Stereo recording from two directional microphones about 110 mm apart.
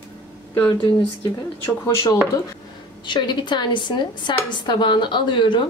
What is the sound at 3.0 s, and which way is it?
A woman's voice, 45° left (ahead or behind).